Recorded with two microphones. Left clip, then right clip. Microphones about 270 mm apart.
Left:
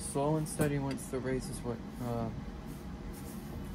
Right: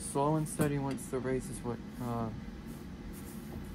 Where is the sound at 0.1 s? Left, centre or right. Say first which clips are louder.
Right 1 dB; centre.